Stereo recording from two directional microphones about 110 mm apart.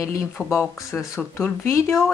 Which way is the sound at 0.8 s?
25° left (ahead or behind).